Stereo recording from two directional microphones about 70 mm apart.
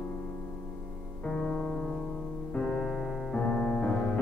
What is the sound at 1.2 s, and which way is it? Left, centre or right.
Music, centre.